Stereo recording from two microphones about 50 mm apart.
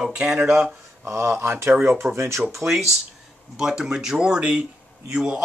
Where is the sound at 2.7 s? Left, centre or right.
Centre.